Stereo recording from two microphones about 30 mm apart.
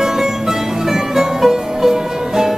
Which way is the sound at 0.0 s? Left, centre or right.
Centre.